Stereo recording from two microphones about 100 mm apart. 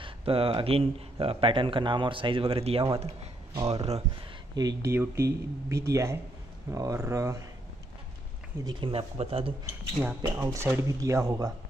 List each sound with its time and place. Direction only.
0.0 s a man's voice: 70° right (ahead or behind)
3.0 s speech: 90° right
4.6 s speech: 40° right (ahead or behind)
4.9 s speech: 30° right (ahead or behind)
8.9 s speech: 70° right (ahead or behind)
9.7 s speech: 25° right (ahead or behind)